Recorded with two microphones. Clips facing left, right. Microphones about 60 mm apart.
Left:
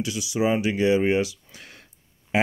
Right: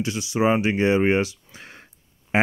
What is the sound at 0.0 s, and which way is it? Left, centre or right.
Speech, right.